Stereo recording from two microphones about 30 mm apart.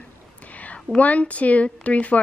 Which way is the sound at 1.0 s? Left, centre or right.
Left.